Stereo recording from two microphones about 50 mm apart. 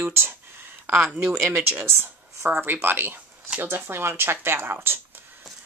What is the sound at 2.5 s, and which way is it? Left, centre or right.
Speech, right.